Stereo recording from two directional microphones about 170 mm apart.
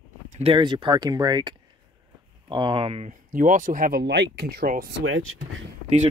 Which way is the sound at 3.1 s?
50° right (ahead or behind).